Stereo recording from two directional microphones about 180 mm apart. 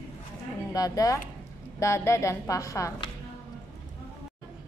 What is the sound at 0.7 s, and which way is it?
A woman's voice, 20° left (ahead or behind).